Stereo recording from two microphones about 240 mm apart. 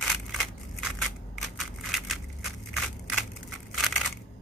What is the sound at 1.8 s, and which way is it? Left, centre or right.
Crushing, centre.